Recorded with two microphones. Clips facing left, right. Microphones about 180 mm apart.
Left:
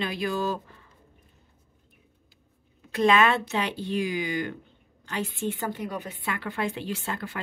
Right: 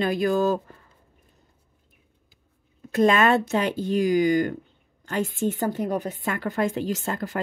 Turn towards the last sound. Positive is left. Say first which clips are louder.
# right 5 dB
turn(degrees=-40)  # may be behind; listen again after turning